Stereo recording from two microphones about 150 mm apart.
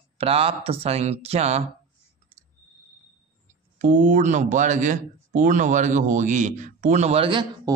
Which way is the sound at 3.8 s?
55° right (ahead or behind).